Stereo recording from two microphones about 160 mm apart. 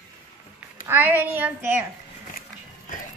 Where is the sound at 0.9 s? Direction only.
10° right (ahead or behind).